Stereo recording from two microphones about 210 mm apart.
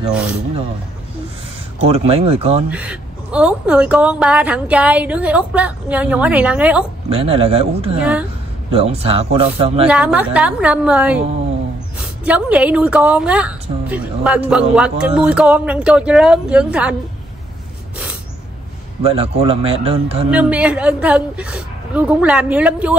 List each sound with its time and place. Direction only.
1.8 s a man's voice: 30° right (ahead or behind)
2.7 s a woman's voice: 5° right (ahead or behind)
7.1 s a man's voice: 25° right (ahead or behind)
8.0 s a woman's voice: 5° right (ahead or behind)
8.7 s a man's voice: 30° right (ahead or behind)
9.8 s a woman's voice: 5° right (ahead or behind)
19.0 s a man's voice: 25° right (ahead or behind)
20.2 s a woman's voice: 5° right (ahead or behind)